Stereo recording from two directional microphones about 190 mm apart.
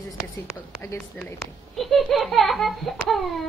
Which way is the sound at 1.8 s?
Centre (ahead or behind).